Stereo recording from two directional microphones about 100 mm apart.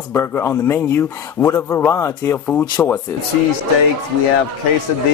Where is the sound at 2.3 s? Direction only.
15° left (ahead or behind).